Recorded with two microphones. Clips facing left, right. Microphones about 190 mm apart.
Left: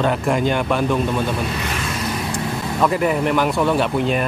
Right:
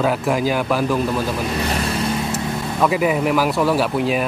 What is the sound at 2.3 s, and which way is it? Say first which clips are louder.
Speech: even; 5° right (ahead or behind).